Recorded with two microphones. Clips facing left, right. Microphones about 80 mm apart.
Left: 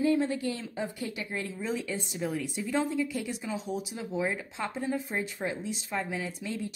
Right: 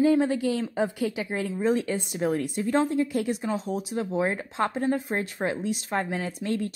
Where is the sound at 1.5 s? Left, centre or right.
Right.